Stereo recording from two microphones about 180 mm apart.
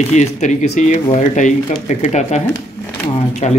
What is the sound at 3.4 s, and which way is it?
Speech, 40° left (ahead or behind).